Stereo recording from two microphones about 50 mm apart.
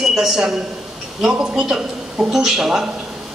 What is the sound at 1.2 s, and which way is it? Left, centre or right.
A woman's voice, right.